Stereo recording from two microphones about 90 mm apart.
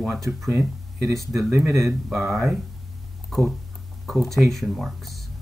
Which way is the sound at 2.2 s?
30° right (ahead or behind).